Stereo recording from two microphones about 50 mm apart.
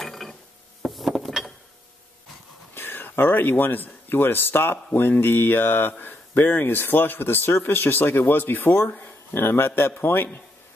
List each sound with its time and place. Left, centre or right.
0.0 s mechanisms: centre
0.8 s a sound: centre
2.7 s a man's voice: left